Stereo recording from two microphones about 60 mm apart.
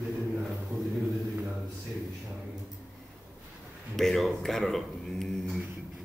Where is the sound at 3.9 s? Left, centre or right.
Centre.